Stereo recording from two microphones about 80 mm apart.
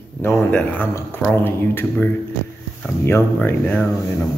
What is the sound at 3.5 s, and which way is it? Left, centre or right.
Speech, left.